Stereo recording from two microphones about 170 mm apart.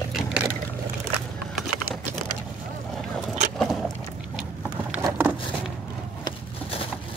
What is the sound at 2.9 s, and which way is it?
Boat, centre (ahead or behind).